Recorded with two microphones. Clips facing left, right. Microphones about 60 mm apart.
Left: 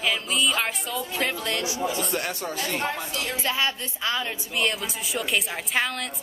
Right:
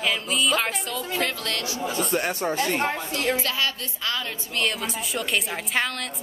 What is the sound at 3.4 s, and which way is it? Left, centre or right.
Speech, left.